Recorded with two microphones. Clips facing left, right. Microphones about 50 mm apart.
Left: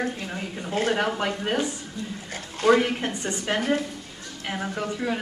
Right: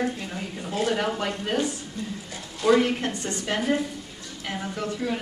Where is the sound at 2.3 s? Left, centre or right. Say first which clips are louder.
Left 3 dB; left.